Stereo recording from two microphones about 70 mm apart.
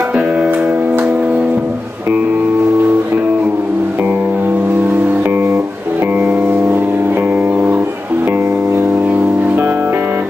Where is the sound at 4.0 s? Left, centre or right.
Right.